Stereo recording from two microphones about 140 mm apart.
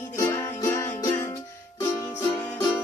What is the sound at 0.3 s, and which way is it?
Music, 20° left (ahead or behind).